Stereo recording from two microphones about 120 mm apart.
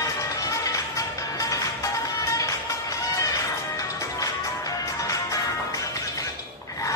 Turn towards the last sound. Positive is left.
turn(degrees=30)  # may be behind; listen again after turning